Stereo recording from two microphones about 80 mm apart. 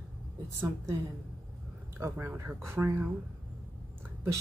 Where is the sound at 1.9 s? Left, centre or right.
Right.